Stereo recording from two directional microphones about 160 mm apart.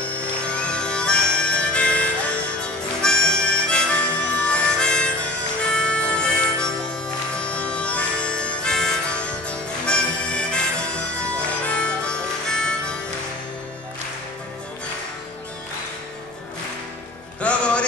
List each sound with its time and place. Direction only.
0.1 s music: 5° left (ahead or behind)
7.3 s harmonica: 5° left (ahead or behind)
17.4 s music: 5° left (ahead or behind)